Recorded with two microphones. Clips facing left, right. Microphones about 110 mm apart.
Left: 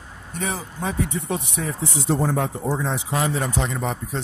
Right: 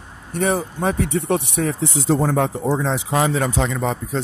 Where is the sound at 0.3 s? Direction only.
60° right (ahead or behind); by 3.4 s 90° right.